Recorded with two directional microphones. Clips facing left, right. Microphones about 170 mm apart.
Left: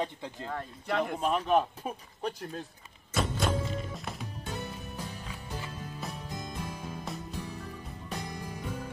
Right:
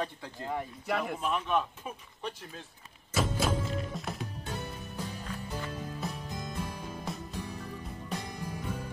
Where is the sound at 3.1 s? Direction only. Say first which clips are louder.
Even; centre (ahead or behind).